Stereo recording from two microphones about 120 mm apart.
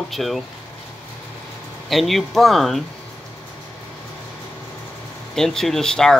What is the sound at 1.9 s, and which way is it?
Speech, centre (ahead or behind).